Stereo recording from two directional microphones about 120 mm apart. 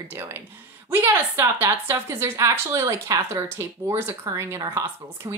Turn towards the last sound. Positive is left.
turn(degrees=-25)  # may be behind; listen again after turning